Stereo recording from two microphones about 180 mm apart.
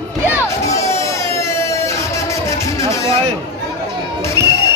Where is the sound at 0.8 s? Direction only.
15° left (ahead or behind).